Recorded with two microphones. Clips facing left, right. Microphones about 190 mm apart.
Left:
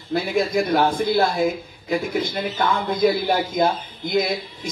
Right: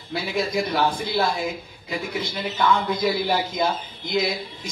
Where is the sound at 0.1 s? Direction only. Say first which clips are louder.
Left 4 dB; 55° left (ahead or behind).